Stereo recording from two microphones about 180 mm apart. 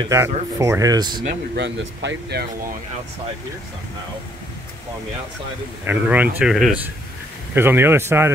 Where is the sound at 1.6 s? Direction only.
80° right.